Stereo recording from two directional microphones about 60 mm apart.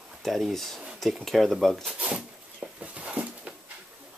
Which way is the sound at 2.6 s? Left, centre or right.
Right.